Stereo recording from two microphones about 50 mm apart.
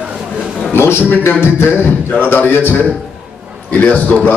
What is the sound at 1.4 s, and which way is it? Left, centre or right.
Music, left.